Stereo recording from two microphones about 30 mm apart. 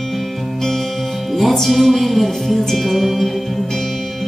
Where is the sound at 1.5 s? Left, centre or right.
Centre.